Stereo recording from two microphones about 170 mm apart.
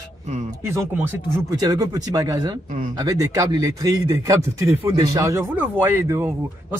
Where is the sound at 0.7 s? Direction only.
15° right (ahead or behind).